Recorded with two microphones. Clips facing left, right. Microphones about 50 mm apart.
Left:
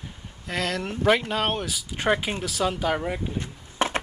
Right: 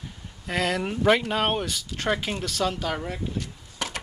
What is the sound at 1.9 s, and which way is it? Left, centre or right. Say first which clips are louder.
Speech: left 3 dB; centre.